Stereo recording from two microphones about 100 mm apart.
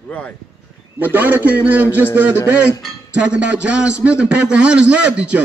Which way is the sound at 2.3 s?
25° left (ahead or behind).